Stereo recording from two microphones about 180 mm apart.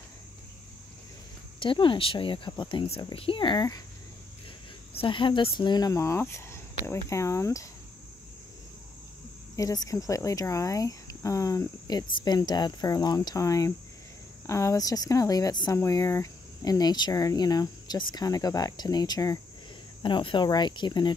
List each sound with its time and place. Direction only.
1.6 s speech: 25° left (ahead or behind)
4.9 s speech: 25° left (ahead or behind)
9.6 s speech: 20° left (ahead or behind)